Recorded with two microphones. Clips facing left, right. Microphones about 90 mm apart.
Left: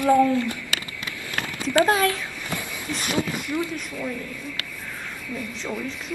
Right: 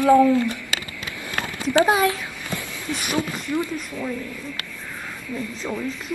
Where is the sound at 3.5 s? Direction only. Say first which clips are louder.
Right 4 dB; 20° right (ahead or behind).